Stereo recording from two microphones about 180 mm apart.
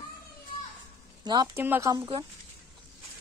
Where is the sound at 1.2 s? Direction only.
25° right (ahead or behind).